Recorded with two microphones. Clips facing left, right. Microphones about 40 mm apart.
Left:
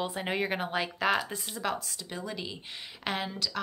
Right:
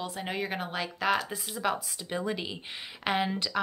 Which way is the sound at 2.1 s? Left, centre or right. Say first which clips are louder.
Right 5 dB; centre.